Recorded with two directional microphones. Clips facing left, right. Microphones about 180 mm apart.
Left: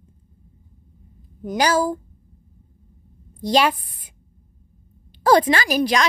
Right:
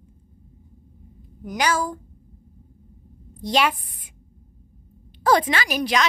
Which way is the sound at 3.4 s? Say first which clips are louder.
Left 3 dB; 35° left (ahead or behind).